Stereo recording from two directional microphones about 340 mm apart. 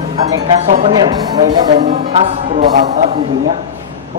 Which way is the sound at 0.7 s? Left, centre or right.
Centre.